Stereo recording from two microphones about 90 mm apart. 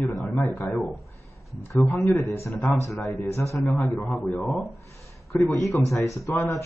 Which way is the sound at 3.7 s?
20° left (ahead or behind).